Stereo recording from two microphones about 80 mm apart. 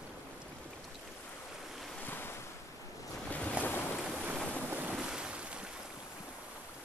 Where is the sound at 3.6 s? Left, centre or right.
Left.